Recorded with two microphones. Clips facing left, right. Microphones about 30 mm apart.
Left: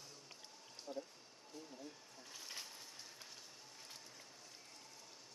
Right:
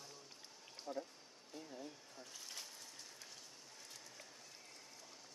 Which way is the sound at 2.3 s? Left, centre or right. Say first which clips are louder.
Left 2 dB; centre.